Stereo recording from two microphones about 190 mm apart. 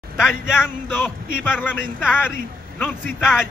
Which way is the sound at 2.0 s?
5° right (ahead or behind).